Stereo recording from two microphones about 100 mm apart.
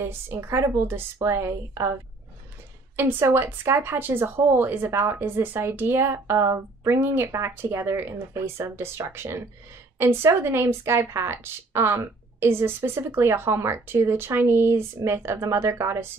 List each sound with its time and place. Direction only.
0.0 s a woman's voice: 25° right (ahead or behind)
3.0 s a woman's voice: 25° right (ahead or behind)